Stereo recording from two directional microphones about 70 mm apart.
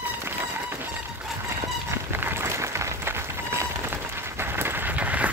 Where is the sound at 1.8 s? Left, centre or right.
Right.